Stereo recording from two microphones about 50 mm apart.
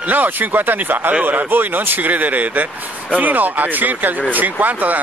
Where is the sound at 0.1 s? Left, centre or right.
Right.